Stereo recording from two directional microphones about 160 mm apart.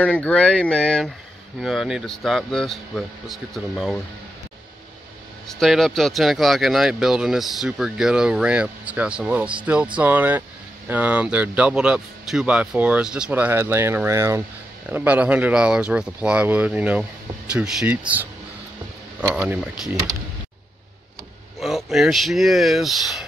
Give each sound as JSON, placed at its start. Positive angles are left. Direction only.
{"t": 0.0, "sound": "speech", "side_deg": 10}
{"t": 5.5, "sound": "a man's voice", "side_deg": 0}
{"t": 19.3, "sound": "a man's voice", "side_deg": -10}
{"t": 21.5, "sound": "speech", "side_deg": 0}